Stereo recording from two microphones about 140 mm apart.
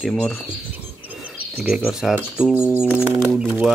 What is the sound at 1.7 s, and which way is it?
Speech, 5° right (ahead or behind).